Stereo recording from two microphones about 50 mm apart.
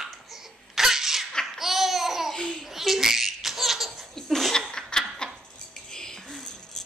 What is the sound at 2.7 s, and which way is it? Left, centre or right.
Laughter, centre.